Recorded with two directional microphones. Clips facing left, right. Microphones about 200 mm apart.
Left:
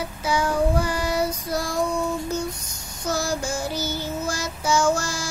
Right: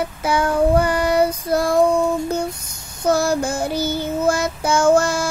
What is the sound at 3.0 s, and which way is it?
Child singing, 60° right (ahead or behind).